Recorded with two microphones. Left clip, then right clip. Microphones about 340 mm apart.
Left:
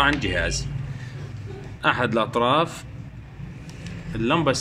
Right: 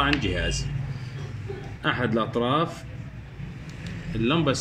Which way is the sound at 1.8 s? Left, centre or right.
Left.